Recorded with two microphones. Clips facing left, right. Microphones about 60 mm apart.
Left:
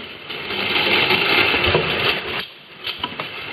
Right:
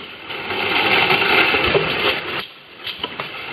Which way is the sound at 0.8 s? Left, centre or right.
Centre.